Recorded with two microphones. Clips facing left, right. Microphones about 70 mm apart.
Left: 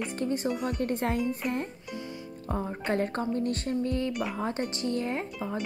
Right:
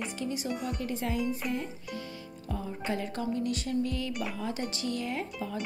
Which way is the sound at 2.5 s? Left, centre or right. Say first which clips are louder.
Left 4 dB; left.